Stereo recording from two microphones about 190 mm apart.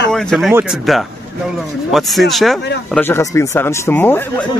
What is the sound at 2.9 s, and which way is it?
Speech, 10° left (ahead or behind).